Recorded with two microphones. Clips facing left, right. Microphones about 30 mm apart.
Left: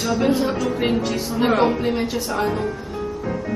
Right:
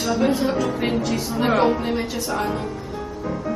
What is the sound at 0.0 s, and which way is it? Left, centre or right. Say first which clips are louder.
A woman's voice: left 1 dB; centre.